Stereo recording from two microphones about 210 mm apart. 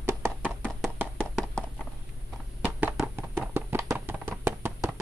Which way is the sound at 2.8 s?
10° right (ahead or behind).